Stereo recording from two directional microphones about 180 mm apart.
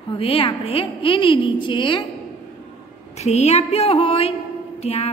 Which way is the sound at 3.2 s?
35° left (ahead or behind).